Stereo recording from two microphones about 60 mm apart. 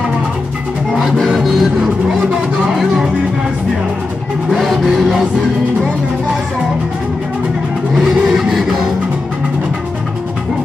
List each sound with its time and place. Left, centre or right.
1.4 s music: centre
4.5 s vehicle: centre
8.0 s music: centre